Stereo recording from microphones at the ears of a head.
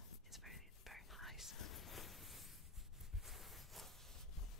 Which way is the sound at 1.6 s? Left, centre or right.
Left.